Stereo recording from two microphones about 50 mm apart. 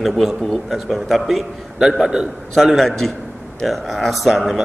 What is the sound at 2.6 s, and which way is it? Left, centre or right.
A man's voice, centre.